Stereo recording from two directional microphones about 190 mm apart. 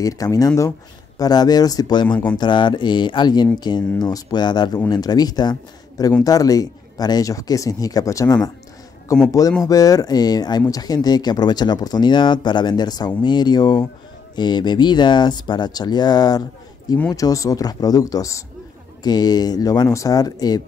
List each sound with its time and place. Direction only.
0.0 s speech: 20° left (ahead or behind)
2.0 s speech: 5° left (ahead or behind)
2.3 s speech: 25° left (ahead or behind)